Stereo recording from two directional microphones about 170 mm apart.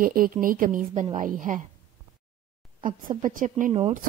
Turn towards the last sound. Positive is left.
turn(degrees=-40)  # may be behind; listen again after turning